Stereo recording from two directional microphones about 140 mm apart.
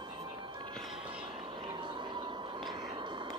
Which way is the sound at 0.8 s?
5° right (ahead or behind).